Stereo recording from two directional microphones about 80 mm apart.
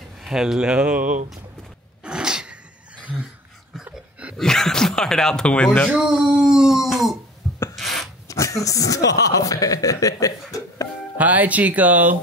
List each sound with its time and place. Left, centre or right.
0.2 s speech: centre
2.0 s a sound: centre
4.4 s speech: centre
5.9 s speech: centre
7.7 s a sound: centre
8.3 s speech: left
11.1 s speech: centre